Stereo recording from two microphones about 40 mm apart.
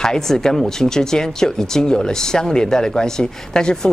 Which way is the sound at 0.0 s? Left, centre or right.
Centre.